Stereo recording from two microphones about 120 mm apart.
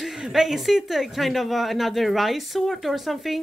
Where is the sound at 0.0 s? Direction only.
Centre (ahead or behind).